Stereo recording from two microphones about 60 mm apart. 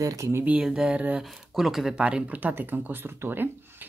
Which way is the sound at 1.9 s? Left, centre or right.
Centre.